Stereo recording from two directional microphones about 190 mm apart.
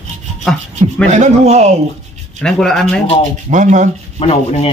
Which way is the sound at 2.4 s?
5° left (ahead or behind).